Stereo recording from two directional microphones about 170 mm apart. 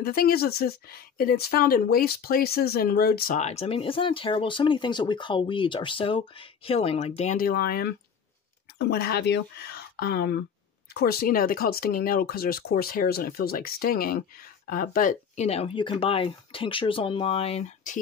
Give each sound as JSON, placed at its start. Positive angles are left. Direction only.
{"t": 0.0, "sound": "speech", "side_deg": 65}
{"t": 3.3, "sound": "speech", "side_deg": 40}
{"t": 7.3, "sound": "speech", "side_deg": 60}